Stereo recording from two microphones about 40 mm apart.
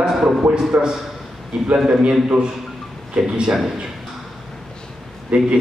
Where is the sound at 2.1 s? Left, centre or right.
Right.